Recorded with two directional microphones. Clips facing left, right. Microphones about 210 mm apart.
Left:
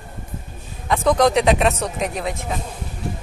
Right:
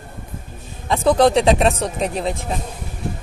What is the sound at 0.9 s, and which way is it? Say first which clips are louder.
Speech: right 2 dB; 30° right (ahead or behind).